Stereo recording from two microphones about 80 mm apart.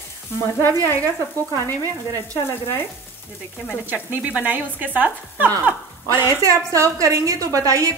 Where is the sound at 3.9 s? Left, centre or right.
Centre.